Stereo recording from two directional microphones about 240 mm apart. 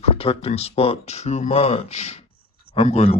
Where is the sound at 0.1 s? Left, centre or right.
Left.